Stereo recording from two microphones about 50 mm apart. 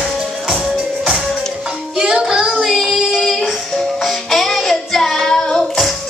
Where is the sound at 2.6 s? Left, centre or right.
Centre.